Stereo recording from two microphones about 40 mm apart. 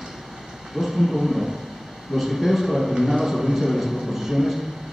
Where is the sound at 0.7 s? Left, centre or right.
Centre.